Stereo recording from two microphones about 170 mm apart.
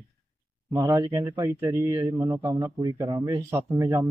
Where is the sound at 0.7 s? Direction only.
20° right (ahead or behind).